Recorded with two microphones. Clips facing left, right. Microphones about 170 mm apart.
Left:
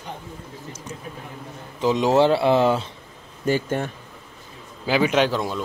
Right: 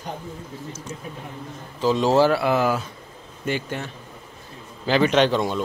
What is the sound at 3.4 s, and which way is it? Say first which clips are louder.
Speech: left 5 dB; 45° left (ahead or behind).